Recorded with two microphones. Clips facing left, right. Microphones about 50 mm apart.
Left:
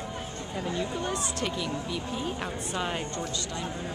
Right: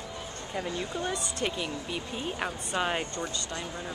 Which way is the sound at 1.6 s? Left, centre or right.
Centre.